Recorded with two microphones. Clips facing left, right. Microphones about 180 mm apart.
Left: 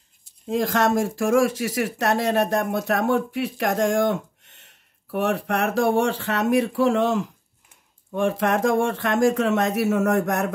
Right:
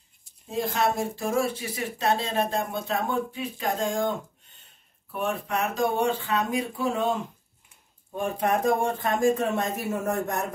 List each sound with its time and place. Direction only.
0.5 s speech: 90° left